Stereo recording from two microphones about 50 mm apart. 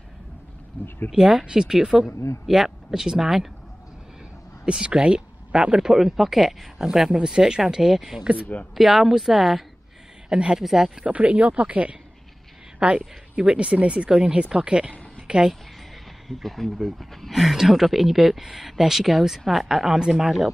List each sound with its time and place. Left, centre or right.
0.8 s speech: left
1.1 s speech: centre
4.6 s speech: centre
10.3 s speech: centre
11.1 s speech: right
16.3 s speech: centre